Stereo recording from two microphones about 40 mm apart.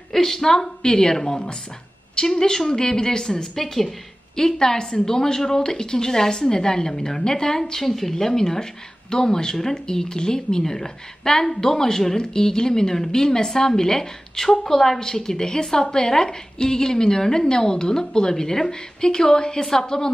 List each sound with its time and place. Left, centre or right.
0.1 s speech: centre